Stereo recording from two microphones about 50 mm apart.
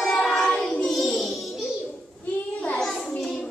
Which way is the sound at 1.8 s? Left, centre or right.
Left.